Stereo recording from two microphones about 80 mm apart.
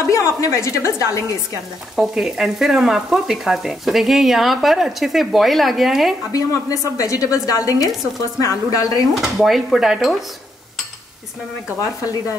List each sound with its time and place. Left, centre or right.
0.4 s a woman's voice: left
2.0 s speech: centre
6.3 s a woman's voice: left
9.2 s speech: centre